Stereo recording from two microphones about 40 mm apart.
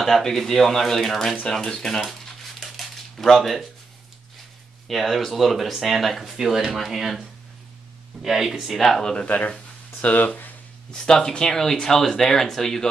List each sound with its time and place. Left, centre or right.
0.0 s speech: centre
1.5 s speech: centre
2.0 s a sound: centre
3.2 s speech: centre
4.8 s speech: centre
8.2 s speech: centre
8.7 s speech: centre
10.0 s speech: left
10.9 s speech: centre